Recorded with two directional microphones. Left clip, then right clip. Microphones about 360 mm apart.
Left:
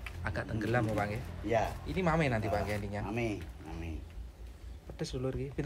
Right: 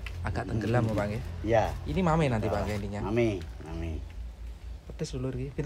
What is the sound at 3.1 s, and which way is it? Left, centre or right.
Speech, right.